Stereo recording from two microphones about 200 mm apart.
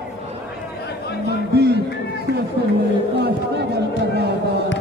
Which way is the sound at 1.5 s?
55° right (ahead or behind).